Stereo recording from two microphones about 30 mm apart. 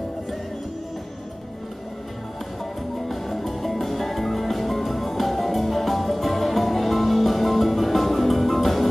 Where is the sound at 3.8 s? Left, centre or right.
Centre.